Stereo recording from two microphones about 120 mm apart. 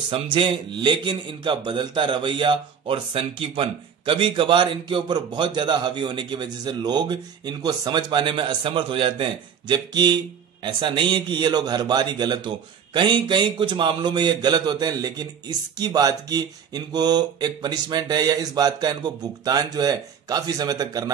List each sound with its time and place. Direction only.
0.1 s speech: 45° right (ahead or behind)